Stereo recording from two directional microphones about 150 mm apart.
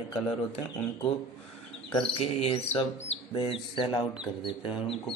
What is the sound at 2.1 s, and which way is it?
Speech, 40° left (ahead or behind).